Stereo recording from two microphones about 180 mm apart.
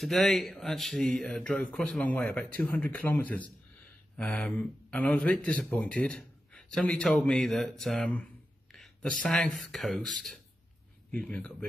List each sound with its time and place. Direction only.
0.0 s speech: centre (ahead or behind)
8.7 s a sound: centre (ahead or behind)
9.2 s speech: 5° left (ahead or behind)